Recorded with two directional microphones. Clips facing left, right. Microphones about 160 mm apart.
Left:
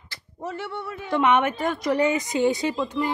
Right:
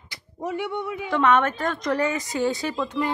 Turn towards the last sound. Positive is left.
turn(degrees=5)  # may be behind; listen again after turning